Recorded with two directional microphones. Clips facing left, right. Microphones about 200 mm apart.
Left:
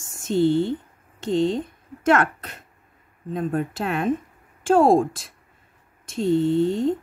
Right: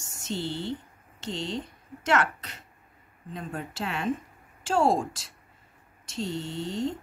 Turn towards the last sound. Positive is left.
turn(degrees=55)  # may be behind; listen again after turning